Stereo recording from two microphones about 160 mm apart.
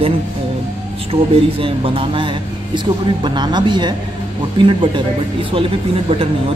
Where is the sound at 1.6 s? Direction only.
35° right (ahead or behind).